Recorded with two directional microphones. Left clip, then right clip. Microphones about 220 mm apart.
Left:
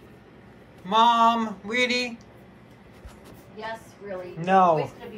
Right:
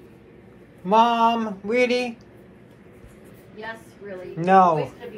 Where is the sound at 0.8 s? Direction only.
5° right (ahead or behind).